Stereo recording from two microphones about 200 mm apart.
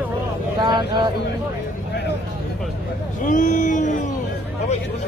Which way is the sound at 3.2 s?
40° left (ahead or behind).